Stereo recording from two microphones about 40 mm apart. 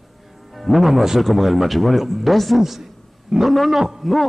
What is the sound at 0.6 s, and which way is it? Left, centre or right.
A man's voice, centre.